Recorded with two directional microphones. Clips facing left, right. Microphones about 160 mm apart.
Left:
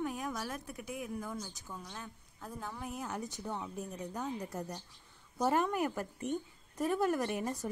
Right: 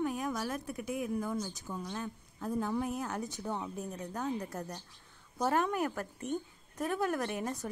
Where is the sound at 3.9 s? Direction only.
10° left (ahead or behind).